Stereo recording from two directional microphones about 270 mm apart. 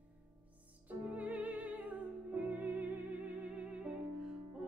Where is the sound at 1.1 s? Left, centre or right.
Centre.